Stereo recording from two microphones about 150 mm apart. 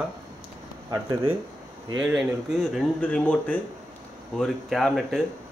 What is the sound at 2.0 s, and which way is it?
Speech, 5° right (ahead or behind).